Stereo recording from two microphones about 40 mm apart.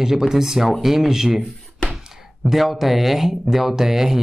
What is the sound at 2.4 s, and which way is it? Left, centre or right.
Speech, centre.